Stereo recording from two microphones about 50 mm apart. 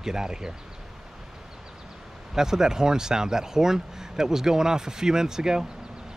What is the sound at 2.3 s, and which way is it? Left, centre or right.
Speech, centre.